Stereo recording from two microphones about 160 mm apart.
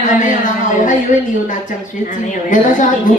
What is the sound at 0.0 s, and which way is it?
Speech, 50° left (ahead or behind).